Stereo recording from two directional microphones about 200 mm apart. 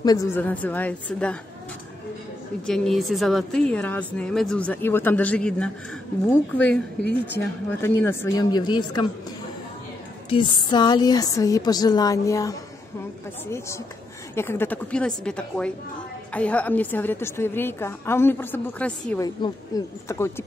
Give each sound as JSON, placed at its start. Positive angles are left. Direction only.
{"t": 0.0, "sound": "a woman's voice", "side_deg": 15}
{"t": 2.6, "sound": "a woman's voice", "side_deg": 5}
{"t": 7.1, "sound": "a woman's voice", "side_deg": 10}
{"t": 10.3, "sound": "a woman's voice", "side_deg": 25}
{"t": 14.3, "sound": "a woman's voice", "side_deg": 10}
{"t": 19.2, "sound": "a woman's voice", "side_deg": 20}